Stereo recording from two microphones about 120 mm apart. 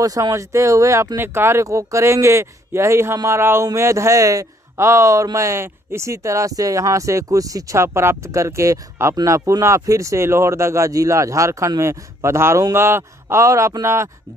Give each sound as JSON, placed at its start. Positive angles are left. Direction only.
{"t": 0.0, "sound": "speech", "side_deg": -30}